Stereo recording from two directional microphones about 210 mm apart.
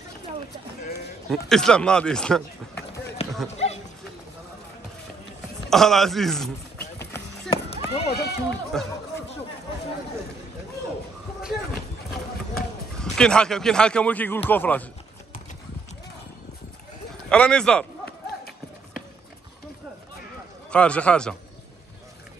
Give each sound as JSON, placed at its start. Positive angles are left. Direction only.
{"t": 1.3, "sound": "speech", "side_deg": 0}
{"t": 3.2, "sound": "run", "side_deg": 30}
{"t": 3.5, "sound": "horse", "side_deg": 30}
{"t": 5.7, "sound": "speech", "side_deg": 0}
{"t": 7.0, "sound": "run", "side_deg": 10}
{"t": 8.1, "sound": "speech", "side_deg": 50}
{"t": 8.7, "sound": "speech", "side_deg": 0}
{"t": 12.5, "sound": "speech", "side_deg": 0}
{"t": 17.3, "sound": "speech", "side_deg": 5}
{"t": 20.7, "sound": "speech", "side_deg": 5}